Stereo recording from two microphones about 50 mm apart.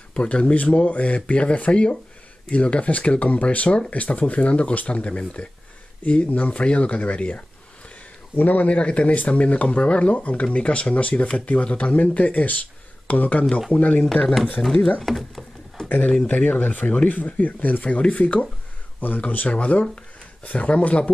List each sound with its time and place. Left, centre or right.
0.1 s speech: left
8.6 s speech: left
14.6 s speech: centre
15.0 s a sound: centre
16.3 s speech: left